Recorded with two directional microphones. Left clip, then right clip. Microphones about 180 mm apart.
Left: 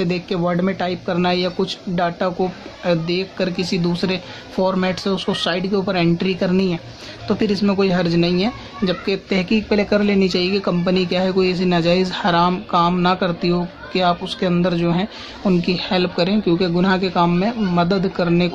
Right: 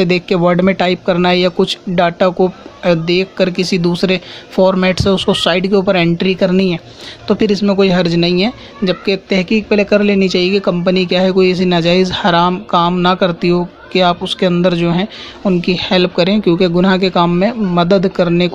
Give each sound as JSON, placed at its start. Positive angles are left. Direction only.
{"t": 0.0, "sound": "a man's voice", "side_deg": -35}